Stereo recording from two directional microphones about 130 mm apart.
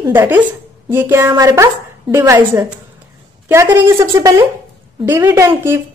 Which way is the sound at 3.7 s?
20° right (ahead or behind).